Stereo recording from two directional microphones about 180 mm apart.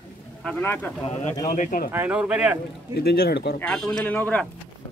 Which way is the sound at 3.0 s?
60° left (ahead or behind).